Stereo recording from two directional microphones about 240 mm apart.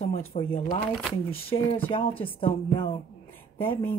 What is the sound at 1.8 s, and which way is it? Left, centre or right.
Speech, left.